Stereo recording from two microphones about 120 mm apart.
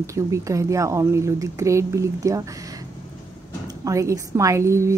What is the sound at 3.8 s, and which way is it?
Speech, 25° right (ahead or behind).